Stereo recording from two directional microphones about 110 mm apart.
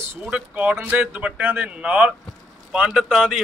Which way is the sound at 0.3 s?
15° right (ahead or behind).